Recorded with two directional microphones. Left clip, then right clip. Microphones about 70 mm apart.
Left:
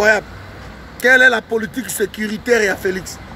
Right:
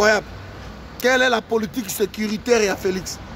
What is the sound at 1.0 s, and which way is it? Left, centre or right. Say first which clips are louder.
A man's voice: left 6 dB; right.